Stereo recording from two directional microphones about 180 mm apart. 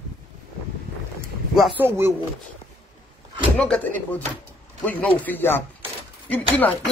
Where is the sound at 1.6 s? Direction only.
Centre (ahead or behind).